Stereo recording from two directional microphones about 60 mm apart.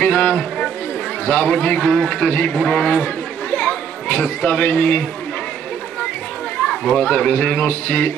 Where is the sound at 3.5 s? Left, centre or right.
Left.